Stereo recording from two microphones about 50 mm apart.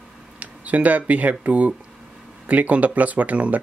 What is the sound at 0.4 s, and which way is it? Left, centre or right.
Speech, right.